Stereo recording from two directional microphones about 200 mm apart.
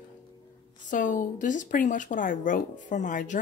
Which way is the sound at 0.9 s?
40° left (ahead or behind).